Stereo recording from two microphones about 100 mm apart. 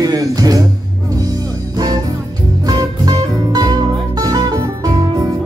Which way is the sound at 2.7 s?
40° right (ahead or behind).